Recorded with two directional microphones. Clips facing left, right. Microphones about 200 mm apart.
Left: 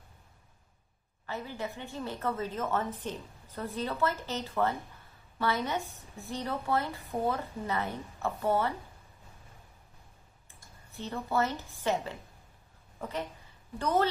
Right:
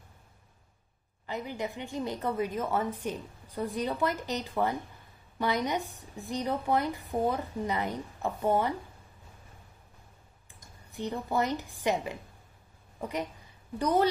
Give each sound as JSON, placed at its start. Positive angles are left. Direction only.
{"t": 1.2, "sound": "a woman's voice", "side_deg": -15}
{"t": 10.9, "sound": "a woman's voice", "side_deg": -15}